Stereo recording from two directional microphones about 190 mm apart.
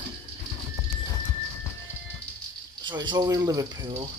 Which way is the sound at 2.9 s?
25° right (ahead or behind).